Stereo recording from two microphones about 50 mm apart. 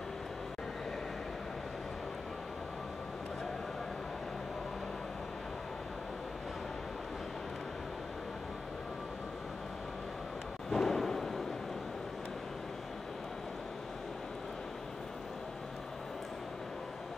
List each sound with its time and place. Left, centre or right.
10.7 s thunder: centre